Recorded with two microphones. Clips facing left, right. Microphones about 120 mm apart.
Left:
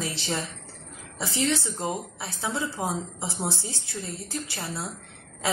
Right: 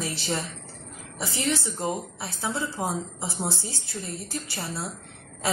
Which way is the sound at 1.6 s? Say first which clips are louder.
Right 1 dB; 20° left (ahead or behind).